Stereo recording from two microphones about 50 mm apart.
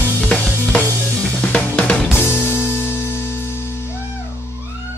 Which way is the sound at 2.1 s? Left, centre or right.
Left.